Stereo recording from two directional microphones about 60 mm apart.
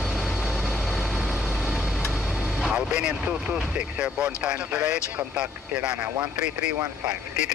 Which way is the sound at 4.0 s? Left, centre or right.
Right.